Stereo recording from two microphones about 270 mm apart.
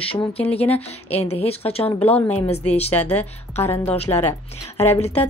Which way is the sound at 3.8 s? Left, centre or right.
Left.